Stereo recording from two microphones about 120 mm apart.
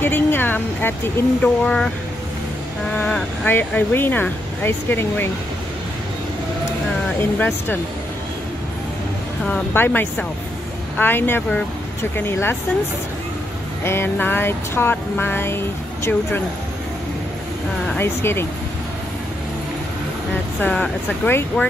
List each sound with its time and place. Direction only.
0.0 s music: 15° left (ahead or behind)
2.9 s music: 10° left (ahead or behind)
7.3 s music: 15° left (ahead or behind)
9.5 s music: 15° left (ahead or behind)
13.8 s music: 20° left (ahead or behind)
17.9 s speech: 20° left (ahead or behind)
20.6 s music: 10° left (ahead or behind)